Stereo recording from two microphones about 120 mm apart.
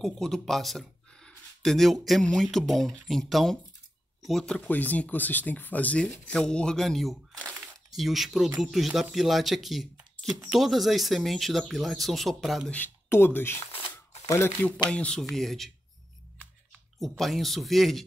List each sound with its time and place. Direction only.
0.0 s speech: centre (ahead or behind)
12.7 s speech: 15° left (ahead or behind)
14.9 s speech: 10° left (ahead or behind)
17.2 s speech: centre (ahead or behind)